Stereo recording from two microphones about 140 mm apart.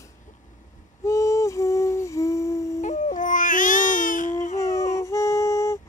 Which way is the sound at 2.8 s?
60° left (ahead or behind).